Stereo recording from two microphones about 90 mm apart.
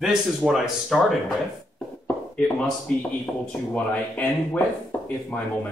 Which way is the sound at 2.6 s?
10° left (ahead or behind).